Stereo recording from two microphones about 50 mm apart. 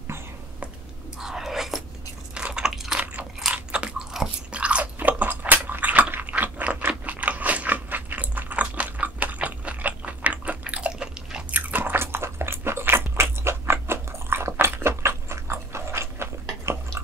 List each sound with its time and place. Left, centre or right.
1.2 s whispering: centre
2.3 s chewing: centre
2.7 s ratchet: centre
3.5 s biting: right
4.1 s chewing: centre
4.5 s biting: right
4.9 s a sound: right
7.1 s biting: right
11.5 s biting: right